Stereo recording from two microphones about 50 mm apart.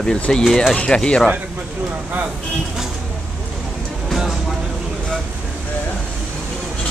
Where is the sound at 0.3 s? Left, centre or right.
Centre.